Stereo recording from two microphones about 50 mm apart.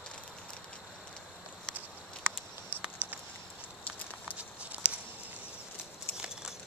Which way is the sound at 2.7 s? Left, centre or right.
Right.